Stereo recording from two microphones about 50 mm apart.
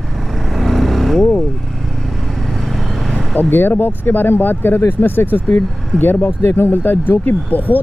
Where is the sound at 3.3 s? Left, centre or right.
Left.